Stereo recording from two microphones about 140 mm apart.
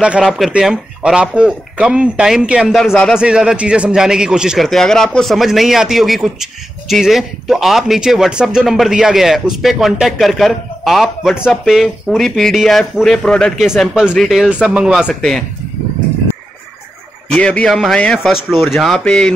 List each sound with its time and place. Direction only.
0.0 s a man's voice: 5° right (ahead or behind)
2.8 s a man's voice: 5° left (ahead or behind)
3.2 s a man's voice: 5° right (ahead or behind)
17.3 s a man's voice: 10° left (ahead or behind)